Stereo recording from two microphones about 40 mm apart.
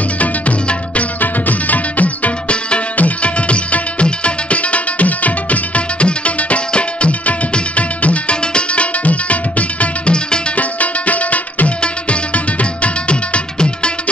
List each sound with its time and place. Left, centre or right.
0.2 s music: left